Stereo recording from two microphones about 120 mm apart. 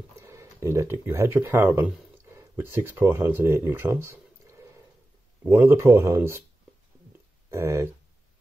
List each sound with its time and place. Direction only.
0.2 s speech: 20° right (ahead or behind)
7.5 s speech: 20° right (ahead or behind)